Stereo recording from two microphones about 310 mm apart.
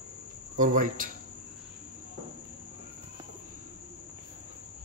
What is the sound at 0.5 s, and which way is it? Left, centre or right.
Speech, right.